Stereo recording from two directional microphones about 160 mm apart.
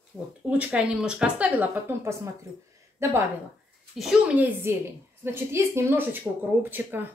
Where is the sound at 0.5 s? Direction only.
10° right (ahead or behind).